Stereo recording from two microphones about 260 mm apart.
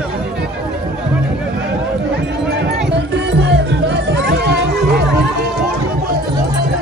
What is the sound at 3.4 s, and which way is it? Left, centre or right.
Music, right.